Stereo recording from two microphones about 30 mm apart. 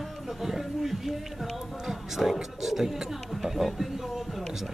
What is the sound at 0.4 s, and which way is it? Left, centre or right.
Speech, centre.